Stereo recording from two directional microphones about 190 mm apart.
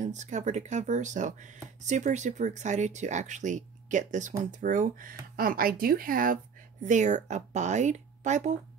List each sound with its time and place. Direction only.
0.0 s speech: 40° right (ahead or behind)